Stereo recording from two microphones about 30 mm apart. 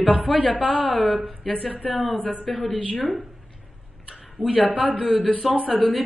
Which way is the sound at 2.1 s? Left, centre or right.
Left.